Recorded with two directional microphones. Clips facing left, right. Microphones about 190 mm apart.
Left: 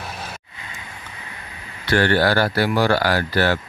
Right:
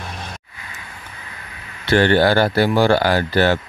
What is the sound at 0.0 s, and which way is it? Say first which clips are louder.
Vehicle: right 1 dB; 5° left (ahead or behind).